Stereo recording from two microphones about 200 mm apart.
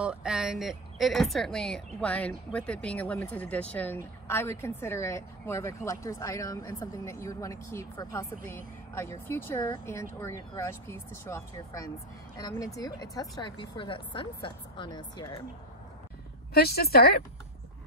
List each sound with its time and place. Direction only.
0.0 s a woman's voice: 5° right (ahead or behind); by 15.4 s 20° left (ahead or behind)
16.5 s a woman's voice: 50° left (ahead or behind)